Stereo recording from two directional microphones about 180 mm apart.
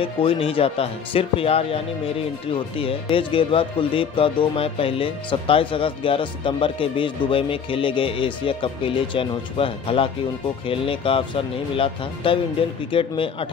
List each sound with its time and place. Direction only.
0.0 s speech: 30° left (ahead or behind)